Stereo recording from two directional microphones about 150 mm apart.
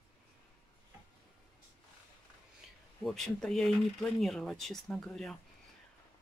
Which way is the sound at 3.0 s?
Centre (ahead or behind).